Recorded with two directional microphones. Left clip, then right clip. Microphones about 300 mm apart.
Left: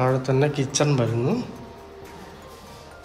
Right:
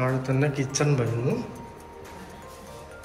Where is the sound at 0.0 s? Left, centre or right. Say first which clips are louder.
Left 5 dB; centre.